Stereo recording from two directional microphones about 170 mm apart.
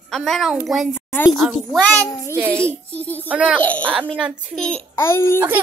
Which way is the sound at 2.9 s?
10° left (ahead or behind).